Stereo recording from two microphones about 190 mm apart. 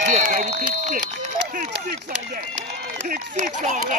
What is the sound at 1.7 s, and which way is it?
A man's voice, 60° right (ahead or behind).